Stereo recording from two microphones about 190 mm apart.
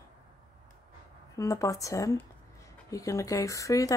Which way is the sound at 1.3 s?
15° left (ahead or behind).